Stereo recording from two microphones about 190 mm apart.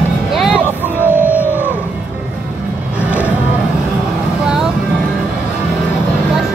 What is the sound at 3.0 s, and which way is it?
Music, 10° right (ahead or behind).